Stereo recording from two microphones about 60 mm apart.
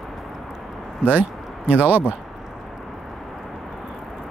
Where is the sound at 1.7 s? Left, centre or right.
Right.